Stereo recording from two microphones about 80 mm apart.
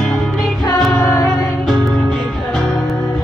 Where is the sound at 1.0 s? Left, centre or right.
Left.